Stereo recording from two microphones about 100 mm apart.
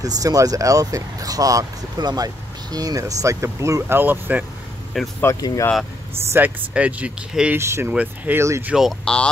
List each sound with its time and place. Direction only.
0.0 s speech: 40° right (ahead or behind); by 4.5 s 15° right (ahead or behind)
5.2 s speech: 30° left (ahead or behind)
6.3 s speech: 15° right (ahead or behind)
7.5 s speech: 25° right (ahead or behind)
7.9 s speech: 15° right (ahead or behind)
8.4 s speech: 25° right (ahead or behind)
8.7 s speech: 5° right (ahead or behind)